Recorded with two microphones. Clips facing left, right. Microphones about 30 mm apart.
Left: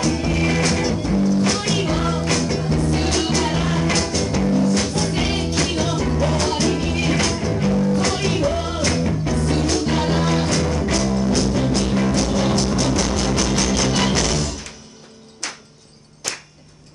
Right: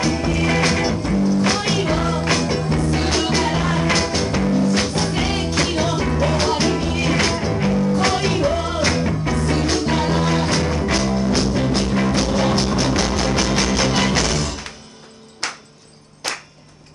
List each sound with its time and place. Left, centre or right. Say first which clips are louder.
0.0 s music: right 1 dB; centre
4.4 s music: left 1 dB; centre
4.7 s music: right 1 dB; right
5.1 s music: even; centre
5.5 s music: right 1 dB; right
9.9 s music: right 1 dB; centre
15.4 s music: right 4 dB; right
16.2 s a sound: right 3 dB; right